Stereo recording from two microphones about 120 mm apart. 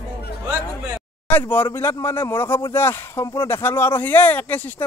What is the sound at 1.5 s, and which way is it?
Speech, 20° left (ahead or behind).